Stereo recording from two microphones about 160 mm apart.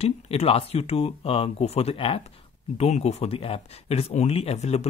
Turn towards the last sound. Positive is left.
turn(degrees=40)  # may be behind; listen again after turning